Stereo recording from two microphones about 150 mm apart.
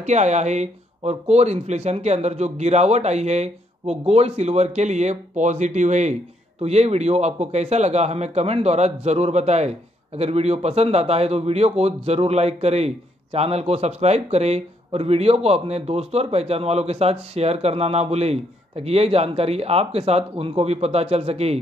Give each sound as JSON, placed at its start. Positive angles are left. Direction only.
{"t": 0.0, "sound": "a man's voice", "side_deg": -50}